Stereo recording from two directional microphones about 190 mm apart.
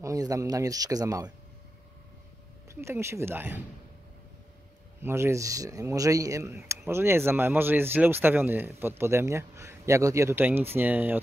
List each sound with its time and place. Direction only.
0.0 s speech: 15° right (ahead or behind)
2.7 s speech: 15° right (ahead or behind)
5.0 s speech: 15° right (ahead or behind)